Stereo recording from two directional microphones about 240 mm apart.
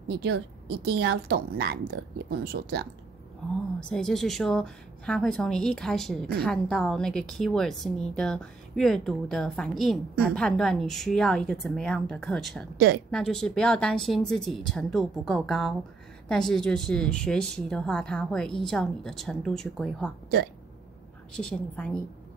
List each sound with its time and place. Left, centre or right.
0.1 s a woman's voice: right
3.8 s speech: centre
12.7 s speech: right
13.1 s speech: centre
21.3 s speech: centre